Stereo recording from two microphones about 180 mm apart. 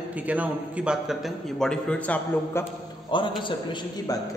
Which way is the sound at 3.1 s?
25° left (ahead or behind).